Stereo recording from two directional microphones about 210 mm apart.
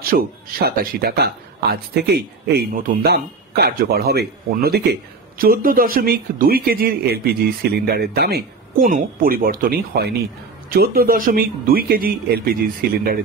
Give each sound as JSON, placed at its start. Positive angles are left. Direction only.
{"t": 0.0, "sound": "speech", "side_deg": -45}